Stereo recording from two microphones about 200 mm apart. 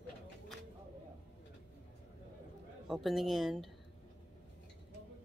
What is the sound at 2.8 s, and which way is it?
Speech, centre (ahead or behind).